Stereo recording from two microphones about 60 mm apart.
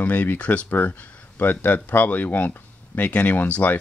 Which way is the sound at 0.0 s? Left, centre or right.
Left.